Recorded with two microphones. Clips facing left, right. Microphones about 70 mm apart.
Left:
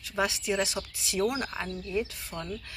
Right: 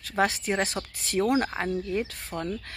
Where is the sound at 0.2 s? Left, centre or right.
Right.